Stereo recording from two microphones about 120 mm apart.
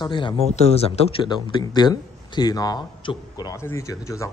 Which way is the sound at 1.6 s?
35° left (ahead or behind).